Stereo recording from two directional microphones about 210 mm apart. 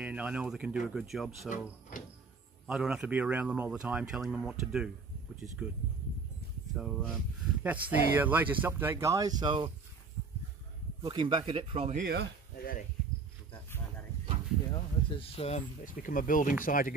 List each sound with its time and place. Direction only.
0.0 s speech: 5° right (ahead or behind)
2.6 s speech: centre (ahead or behind)
6.7 s speech: centre (ahead or behind); by 9.7 s 20° right (ahead or behind)
11.0 s speech: 20° right (ahead or behind)
11.9 s speech: 45° right (ahead or behind)
12.5 s a sound: 45° left (ahead or behind)
14.7 s speech: 25° left (ahead or behind); by 16.9 s 40° left (ahead or behind)